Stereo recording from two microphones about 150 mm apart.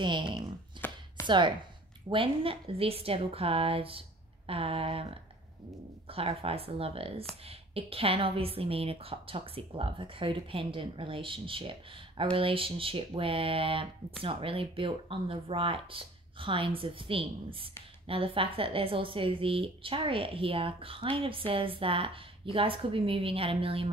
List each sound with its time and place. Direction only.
0.0 s speech: 30° right (ahead or behind)
0.7 s chopping: 15° left (ahead or behind)
1.2 s speech: 30° right (ahead or behind)